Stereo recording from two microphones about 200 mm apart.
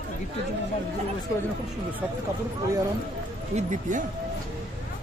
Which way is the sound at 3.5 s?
35° right (ahead or behind).